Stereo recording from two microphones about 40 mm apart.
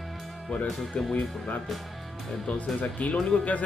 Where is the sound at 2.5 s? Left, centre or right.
Left.